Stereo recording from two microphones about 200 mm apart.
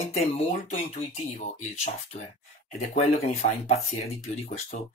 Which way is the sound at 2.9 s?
35° left (ahead or behind).